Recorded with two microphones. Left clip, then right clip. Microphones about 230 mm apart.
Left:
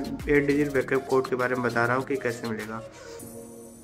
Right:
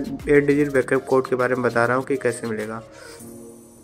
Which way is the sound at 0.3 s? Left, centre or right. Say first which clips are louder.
Right 6 dB; centre.